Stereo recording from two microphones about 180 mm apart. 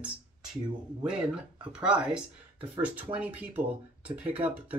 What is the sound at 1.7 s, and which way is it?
Speech, 5° right (ahead or behind).